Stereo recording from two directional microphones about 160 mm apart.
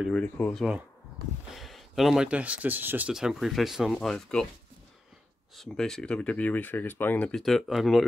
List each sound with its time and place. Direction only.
0.1 s speech: 5° left (ahead or behind)
5.6 s speech: 5° left (ahead or behind)